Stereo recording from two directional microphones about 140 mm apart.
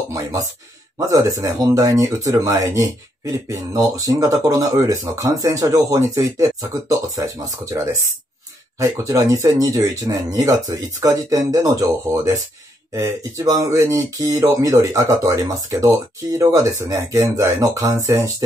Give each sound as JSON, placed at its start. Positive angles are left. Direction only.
{"t": 0.1, "sound": "speech", "side_deg": -25}